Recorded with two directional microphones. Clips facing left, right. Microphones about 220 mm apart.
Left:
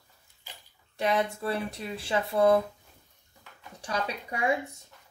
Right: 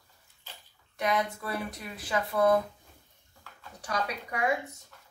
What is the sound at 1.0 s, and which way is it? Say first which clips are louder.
Speech: left 2 dB; 30° left (ahead or behind).